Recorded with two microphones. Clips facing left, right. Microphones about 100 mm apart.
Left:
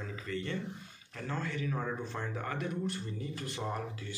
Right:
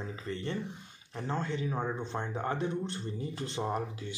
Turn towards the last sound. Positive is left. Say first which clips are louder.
# right 4 dB
turn(degrees=-25)  # may be behind; listen again after turning